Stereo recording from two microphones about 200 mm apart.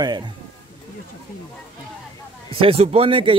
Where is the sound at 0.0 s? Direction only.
20° right (ahead or behind).